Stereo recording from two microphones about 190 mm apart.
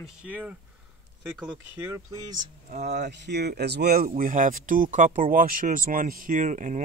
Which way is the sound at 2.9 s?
65° right (ahead or behind).